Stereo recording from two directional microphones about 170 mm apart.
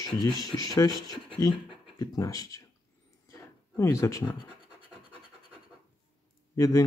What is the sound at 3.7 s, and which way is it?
Speech, 20° left (ahead or behind).